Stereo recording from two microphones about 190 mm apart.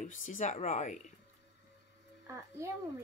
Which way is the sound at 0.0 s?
45° left (ahead or behind).